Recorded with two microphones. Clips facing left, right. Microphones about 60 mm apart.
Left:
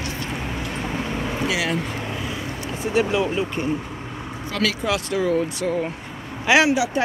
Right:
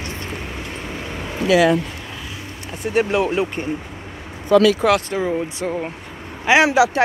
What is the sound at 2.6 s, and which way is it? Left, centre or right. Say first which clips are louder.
Speech: right 2 dB; right.